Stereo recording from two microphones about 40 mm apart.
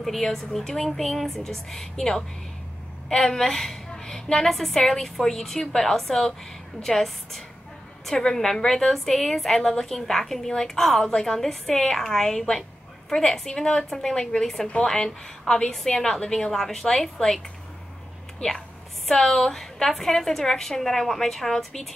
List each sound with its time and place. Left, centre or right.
0.0 s a woman's voice: centre
3.3 s a woman's voice: centre
13.5 s a woman's voice: left
13.8 s a woman's voice: centre
19.0 s a woman's voice: centre